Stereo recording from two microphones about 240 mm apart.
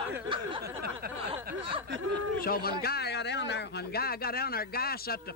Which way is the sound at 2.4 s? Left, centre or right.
Left.